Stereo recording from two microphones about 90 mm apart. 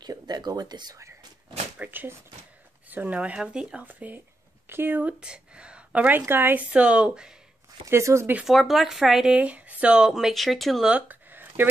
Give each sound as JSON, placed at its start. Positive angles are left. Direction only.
{"t": 0.0, "sound": "speech", "side_deg": -50}
{"t": 1.8, "sound": "a woman's voice", "side_deg": -20}
{"t": 5.2, "sound": "a woman's voice", "side_deg": -10}
{"t": 7.8, "sound": "speech", "side_deg": -35}
{"t": 8.5, "sound": "speech", "side_deg": 0}
{"t": 10.9, "sound": "a sound", "side_deg": -15}